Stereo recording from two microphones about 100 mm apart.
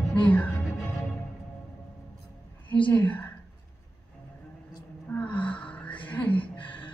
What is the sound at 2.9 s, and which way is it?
Speech, 15° left (ahead or behind).